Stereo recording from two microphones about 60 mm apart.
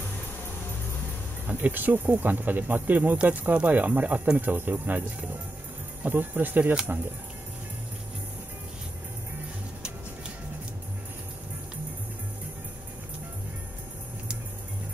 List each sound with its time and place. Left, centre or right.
1.5 s speech: right
6.0 s speech: right